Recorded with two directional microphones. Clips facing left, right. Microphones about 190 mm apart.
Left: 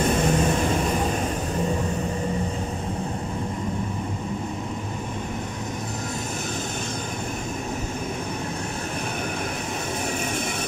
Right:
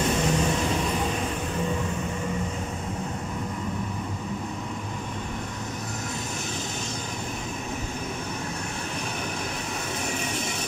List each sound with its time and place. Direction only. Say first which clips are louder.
0.1 s vehicle: left 3 dB; 50° left (ahead or behind)